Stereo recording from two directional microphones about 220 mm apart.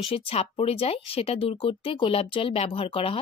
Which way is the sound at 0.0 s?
25° left (ahead or behind).